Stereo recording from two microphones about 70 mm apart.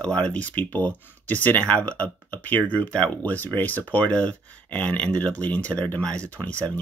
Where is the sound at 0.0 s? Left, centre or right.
Centre.